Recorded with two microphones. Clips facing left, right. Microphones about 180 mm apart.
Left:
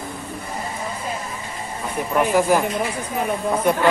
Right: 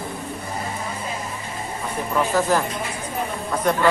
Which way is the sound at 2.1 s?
15° left (ahead or behind).